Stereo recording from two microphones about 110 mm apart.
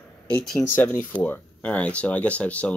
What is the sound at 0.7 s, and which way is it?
Speech, 15° left (ahead or behind).